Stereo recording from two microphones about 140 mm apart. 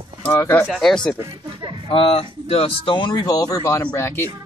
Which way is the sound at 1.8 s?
40° left (ahead or behind).